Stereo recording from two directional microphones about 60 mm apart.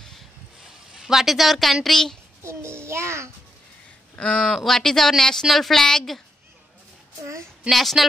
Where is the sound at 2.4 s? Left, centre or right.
Right.